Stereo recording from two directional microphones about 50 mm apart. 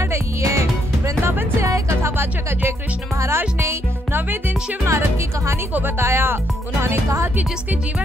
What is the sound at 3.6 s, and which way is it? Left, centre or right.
Speech, right.